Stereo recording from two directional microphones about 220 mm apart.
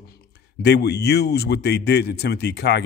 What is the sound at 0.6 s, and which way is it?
Speech, 50° left (ahead or behind).